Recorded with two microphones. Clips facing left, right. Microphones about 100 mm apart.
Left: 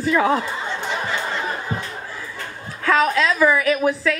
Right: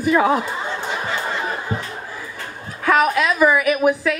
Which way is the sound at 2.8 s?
20° right (ahead or behind).